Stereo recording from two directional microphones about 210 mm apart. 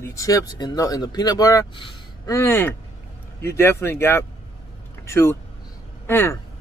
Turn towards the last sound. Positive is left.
turn(degrees=10)  # may be behind; listen again after turning